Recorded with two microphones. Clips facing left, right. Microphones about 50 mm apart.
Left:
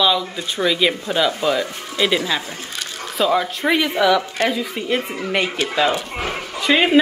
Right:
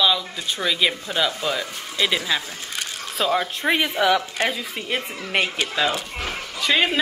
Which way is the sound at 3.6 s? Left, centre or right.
Centre.